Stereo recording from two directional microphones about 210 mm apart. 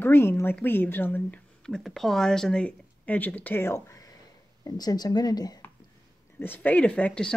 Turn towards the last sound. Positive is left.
turn(degrees=5)  # may be behind; listen again after turning